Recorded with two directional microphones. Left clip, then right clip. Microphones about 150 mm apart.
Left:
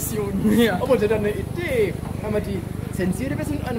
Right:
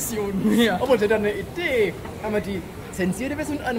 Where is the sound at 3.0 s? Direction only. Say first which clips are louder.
Even; 30° right (ahead or behind).